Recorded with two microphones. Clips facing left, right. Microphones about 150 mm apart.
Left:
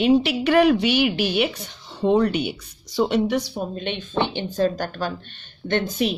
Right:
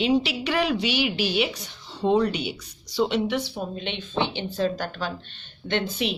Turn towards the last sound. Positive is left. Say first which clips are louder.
# left 4 dB
turn(degrees=45)  # may be behind; listen again after turning